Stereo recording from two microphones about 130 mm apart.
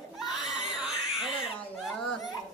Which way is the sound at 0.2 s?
Centre (ahead or behind).